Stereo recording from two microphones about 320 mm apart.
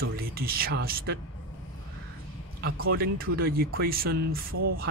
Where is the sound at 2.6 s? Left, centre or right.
Right.